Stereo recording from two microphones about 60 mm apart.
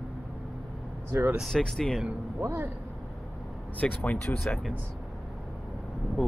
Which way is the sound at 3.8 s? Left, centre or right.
Left.